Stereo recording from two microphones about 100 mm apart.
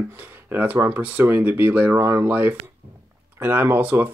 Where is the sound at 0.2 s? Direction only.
20° right (ahead or behind).